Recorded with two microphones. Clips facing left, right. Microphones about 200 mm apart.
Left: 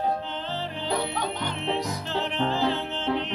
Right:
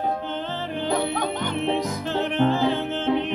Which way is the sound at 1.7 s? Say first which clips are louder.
Right 2 dB; 55° right (ahead or behind).